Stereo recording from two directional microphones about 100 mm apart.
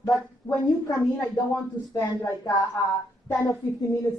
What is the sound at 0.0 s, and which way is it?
Speech, 40° left (ahead or behind).